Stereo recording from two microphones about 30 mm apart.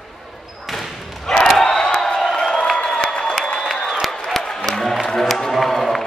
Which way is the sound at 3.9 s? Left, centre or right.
Centre.